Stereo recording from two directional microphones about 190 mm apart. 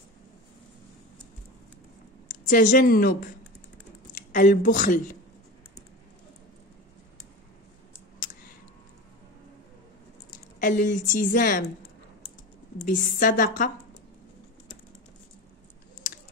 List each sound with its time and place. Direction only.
2.4 s a woman's voice: 45° left (ahead or behind)
10.6 s a woman's voice: 45° left (ahead or behind)